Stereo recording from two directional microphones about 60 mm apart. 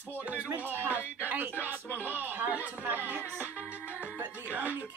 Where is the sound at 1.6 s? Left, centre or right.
Left.